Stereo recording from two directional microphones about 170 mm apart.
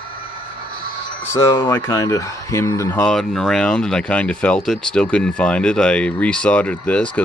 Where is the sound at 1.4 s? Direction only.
15° left (ahead or behind).